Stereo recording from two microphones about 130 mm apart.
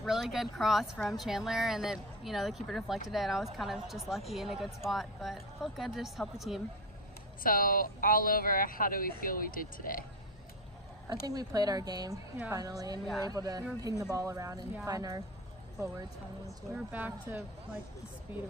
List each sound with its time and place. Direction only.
0.0 s a woman's voice: 5° right (ahead or behind)
7.4 s speech: 90° left
11.2 s speech: 30° right (ahead or behind)
16.4 s speech: 10° right (ahead or behind)